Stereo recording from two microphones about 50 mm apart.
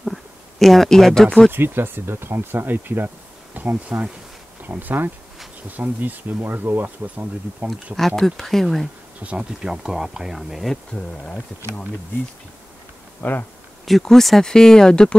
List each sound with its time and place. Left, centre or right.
0.0 s a sound: centre
1.5 s speech: right
6.4 s speech: right
8.4 s speech: centre
9.2 s speech: right
9.8 s speech: centre
10.7 s speech: centre
13.2 s speech: left
13.8 s speech: centre